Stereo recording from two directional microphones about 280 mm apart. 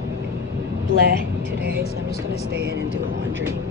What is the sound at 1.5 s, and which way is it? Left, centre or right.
Vehicle, right.